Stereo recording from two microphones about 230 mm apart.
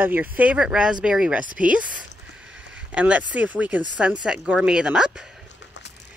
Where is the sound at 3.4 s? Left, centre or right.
Centre.